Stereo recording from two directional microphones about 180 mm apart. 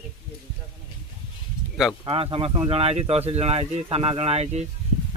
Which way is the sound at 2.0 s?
30° right (ahead or behind).